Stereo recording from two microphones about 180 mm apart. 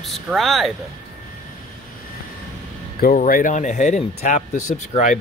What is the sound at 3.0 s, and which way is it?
Speech, 50° left (ahead or behind).